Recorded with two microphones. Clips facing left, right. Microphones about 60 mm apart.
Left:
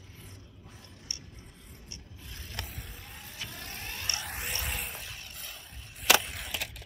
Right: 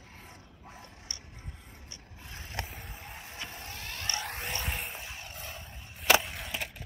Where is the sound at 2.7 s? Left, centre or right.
Centre.